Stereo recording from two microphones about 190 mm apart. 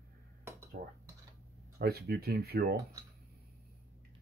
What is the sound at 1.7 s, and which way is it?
Speech, 55° right (ahead or behind).